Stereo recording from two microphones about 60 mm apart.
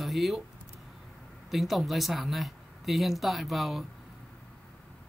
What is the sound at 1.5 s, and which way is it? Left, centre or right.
Speech, centre.